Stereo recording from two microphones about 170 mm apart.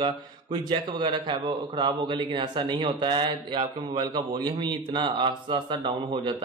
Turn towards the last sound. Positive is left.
turn(degrees=-30)  # may be behind; listen again after turning